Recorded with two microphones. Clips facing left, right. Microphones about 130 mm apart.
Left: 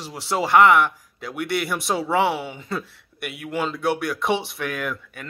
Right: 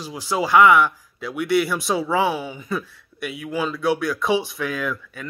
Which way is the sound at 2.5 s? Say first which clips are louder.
Right 2 dB; 25° left (ahead or behind).